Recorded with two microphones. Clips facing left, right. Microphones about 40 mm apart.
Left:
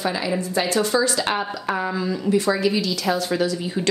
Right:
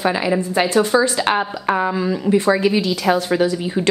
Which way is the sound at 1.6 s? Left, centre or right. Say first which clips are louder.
Right 6 dB; right.